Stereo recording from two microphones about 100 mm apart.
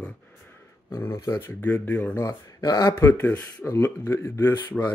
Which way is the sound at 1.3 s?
25° left (ahead or behind).